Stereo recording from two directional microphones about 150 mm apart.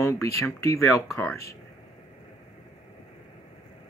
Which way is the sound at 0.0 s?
20° left (ahead or behind).